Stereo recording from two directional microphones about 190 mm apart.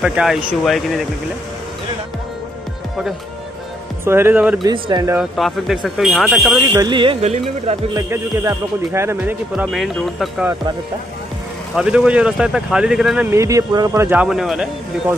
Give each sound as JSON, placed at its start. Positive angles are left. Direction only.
{"t": 0.0, "sound": "speech", "side_deg": -5}
{"t": 4.0, "sound": "speech", "side_deg": -10}
{"t": 4.6, "sound": "speech", "side_deg": -20}
{"t": 5.1, "sound": "speech", "side_deg": 0}
{"t": 6.9, "sound": "speech", "side_deg": -25}
{"t": 8.1, "sound": "speech", "side_deg": -15}
{"t": 11.7, "sound": "speech", "side_deg": -5}